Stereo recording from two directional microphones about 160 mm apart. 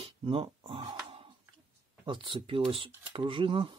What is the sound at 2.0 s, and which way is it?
Speech, 30° right (ahead or behind).